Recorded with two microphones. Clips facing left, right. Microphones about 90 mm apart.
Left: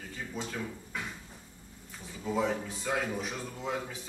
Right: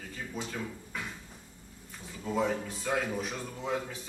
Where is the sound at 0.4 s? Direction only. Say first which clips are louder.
Even; 5° left (ahead or behind).